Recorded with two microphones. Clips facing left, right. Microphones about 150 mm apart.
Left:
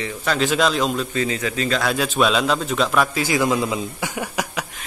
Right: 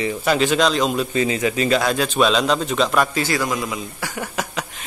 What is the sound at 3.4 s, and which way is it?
Speech, 25° left (ahead or behind).